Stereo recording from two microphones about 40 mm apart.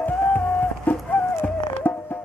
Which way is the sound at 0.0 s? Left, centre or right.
Left.